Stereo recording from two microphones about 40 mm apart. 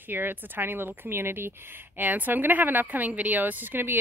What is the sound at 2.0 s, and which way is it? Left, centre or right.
A woman's voice, right.